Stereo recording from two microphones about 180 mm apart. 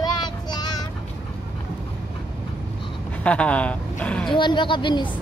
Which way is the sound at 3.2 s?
5° left (ahead or behind).